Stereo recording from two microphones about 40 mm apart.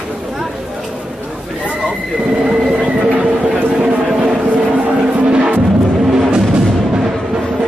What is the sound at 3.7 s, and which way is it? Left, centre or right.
Vehicle, right.